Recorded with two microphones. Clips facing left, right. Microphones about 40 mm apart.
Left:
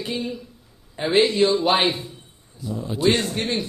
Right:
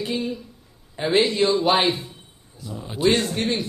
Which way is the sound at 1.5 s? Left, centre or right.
Centre.